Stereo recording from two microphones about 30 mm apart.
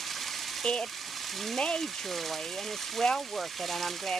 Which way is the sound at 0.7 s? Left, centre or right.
Left.